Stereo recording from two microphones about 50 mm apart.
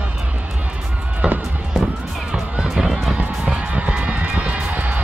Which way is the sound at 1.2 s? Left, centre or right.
Centre.